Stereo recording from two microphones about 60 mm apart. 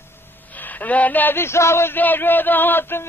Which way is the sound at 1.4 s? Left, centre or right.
Left.